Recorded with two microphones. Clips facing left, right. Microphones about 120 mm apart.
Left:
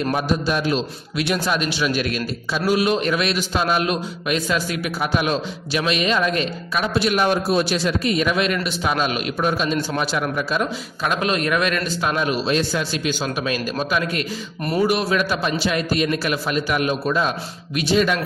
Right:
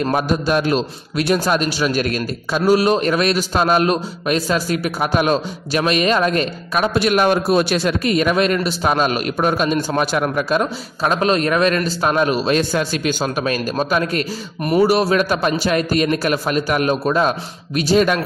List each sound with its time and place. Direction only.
0.1 s a man's voice: 50° right (ahead or behind)
11.0 s a man's voice: 35° right (ahead or behind)